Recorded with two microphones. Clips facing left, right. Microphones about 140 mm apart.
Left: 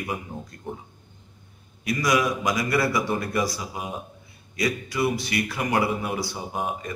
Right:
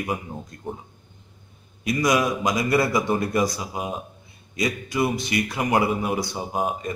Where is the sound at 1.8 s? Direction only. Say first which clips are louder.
Right 2 dB; 20° right (ahead or behind).